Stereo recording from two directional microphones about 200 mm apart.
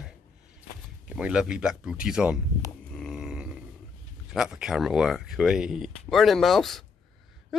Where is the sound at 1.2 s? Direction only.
5° right (ahead or behind).